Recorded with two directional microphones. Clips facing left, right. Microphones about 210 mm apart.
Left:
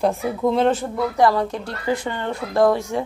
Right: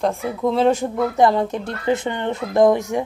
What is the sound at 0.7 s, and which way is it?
Speech, 20° right (ahead or behind).